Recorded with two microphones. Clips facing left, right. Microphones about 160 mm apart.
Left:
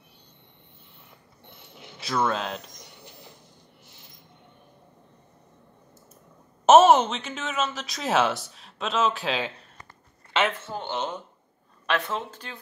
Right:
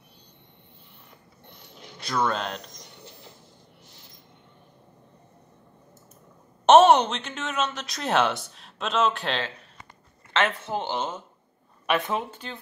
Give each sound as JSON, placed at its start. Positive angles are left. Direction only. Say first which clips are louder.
{"t": 2.0, "sound": "a woman's voice", "louder": "even", "side_deg": 5}
{"t": 6.6, "sound": "a woman's voice", "louder": "even", "side_deg": 0}
{"t": 10.6, "sound": "speech", "louder": "right 5 dB", "side_deg": -20}
{"t": 11.0, "sound": "a woman's voice", "louder": "even", "side_deg": -5}
{"t": 12.4, "sound": "a woman's voice", "louder": "right 3 dB", "side_deg": 0}